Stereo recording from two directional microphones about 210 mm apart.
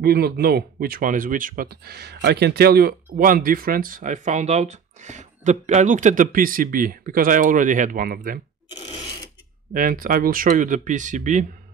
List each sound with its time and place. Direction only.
0.0 s speech: 50° right (ahead or behind)
9.8 s speech: 40° right (ahead or behind)